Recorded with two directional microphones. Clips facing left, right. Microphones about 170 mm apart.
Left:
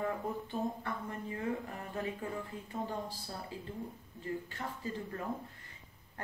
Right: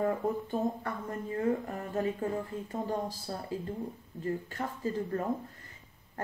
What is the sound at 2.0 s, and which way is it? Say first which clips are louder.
Speech: right 7 dB; 40° right (ahead or behind).